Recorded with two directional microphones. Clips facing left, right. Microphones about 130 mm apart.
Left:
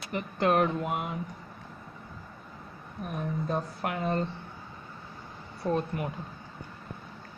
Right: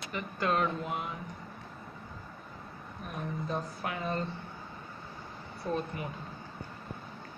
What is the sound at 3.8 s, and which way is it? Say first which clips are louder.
Speech: left 4 dB; 55° left (ahead or behind).